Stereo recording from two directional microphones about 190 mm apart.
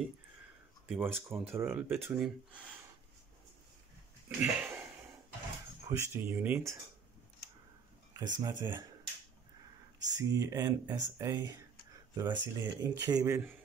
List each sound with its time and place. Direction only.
0.8 s speech: centre (ahead or behind)
1.3 s speech: 15° right (ahead or behind)
4.4 s a sound: 10° right (ahead or behind)
5.9 s speech: 15° right (ahead or behind)
8.1 s speech: 20° right (ahead or behind)
10.1 s speech: 20° right (ahead or behind)